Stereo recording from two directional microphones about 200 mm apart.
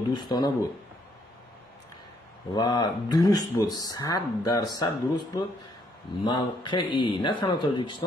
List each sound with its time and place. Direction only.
0.1 s speech: 20° left (ahead or behind)
2.5 s speech: 20° left (ahead or behind)